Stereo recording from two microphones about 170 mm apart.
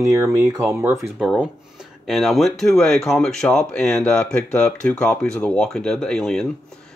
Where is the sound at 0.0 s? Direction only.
20° right (ahead or behind).